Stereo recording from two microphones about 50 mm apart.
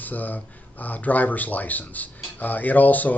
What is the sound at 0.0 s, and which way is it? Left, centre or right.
Speech, left.